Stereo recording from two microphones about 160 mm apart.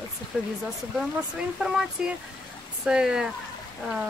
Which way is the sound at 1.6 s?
5° right (ahead or behind).